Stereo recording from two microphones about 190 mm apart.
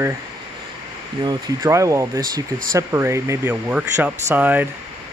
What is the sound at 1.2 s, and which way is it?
A man's voice, 20° right (ahead or behind).